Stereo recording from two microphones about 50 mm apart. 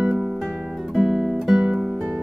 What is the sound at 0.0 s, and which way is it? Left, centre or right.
Music, centre.